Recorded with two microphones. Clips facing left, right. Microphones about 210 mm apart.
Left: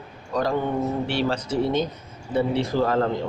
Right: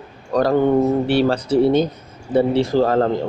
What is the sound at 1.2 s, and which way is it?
A man's voice, 35° right (ahead or behind).